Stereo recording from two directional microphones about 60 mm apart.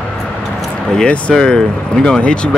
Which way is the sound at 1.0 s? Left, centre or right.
Left.